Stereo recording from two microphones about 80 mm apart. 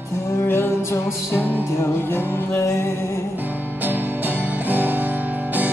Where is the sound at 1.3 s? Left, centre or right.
Right.